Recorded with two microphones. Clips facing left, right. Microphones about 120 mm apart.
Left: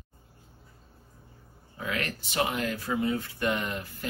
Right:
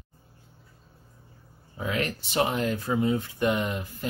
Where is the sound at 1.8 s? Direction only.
25° right (ahead or behind).